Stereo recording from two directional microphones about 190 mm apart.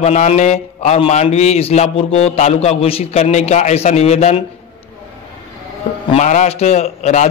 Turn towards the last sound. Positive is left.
turn(degrees=35)  # may be behind; listen again after turning